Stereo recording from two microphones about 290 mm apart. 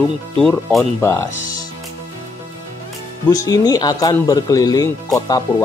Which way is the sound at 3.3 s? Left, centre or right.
Centre.